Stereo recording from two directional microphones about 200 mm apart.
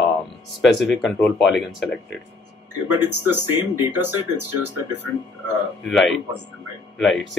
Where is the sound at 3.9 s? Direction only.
10° right (ahead or behind).